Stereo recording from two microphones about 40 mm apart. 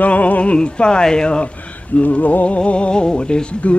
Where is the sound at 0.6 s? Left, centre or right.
Left.